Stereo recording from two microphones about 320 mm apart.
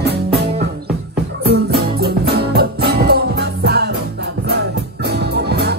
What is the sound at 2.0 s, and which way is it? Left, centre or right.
Music, right.